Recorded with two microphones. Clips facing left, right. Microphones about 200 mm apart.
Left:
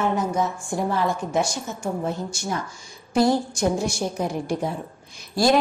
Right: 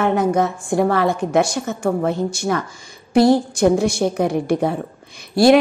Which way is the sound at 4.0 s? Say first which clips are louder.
Right 7 dB; 65° right (ahead or behind).